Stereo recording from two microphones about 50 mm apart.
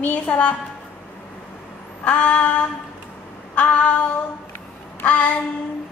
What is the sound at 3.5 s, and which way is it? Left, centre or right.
Female singing, left.